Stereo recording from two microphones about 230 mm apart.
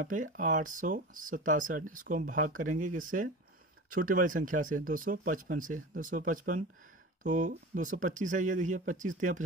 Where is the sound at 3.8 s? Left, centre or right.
Right.